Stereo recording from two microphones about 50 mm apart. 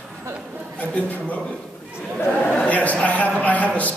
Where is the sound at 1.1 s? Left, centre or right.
Left.